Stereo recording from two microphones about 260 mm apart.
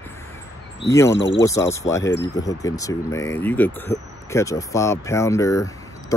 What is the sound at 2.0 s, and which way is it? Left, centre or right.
Speech, left.